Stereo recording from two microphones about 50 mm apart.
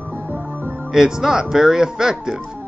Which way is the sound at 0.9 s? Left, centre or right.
Centre.